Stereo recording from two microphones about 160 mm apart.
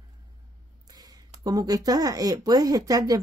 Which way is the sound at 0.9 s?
25° right (ahead or behind).